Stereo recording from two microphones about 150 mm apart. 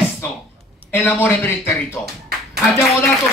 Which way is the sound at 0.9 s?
15° left (ahead or behind).